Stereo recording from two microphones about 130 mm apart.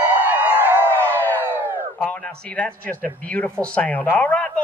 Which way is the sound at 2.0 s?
10° left (ahead or behind).